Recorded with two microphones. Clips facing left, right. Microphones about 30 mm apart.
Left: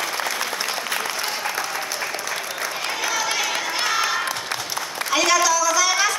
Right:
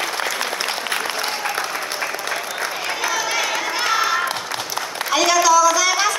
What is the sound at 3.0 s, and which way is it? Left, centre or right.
Crowd, centre.